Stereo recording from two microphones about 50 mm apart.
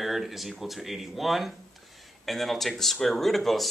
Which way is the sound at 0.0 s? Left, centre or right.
Centre.